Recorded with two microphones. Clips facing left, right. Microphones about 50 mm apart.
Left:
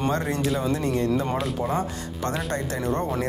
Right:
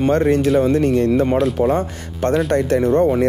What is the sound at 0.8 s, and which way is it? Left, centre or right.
Speech, right.